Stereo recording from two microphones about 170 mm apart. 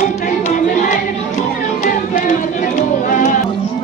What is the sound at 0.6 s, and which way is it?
Music, 50° left (ahead or behind).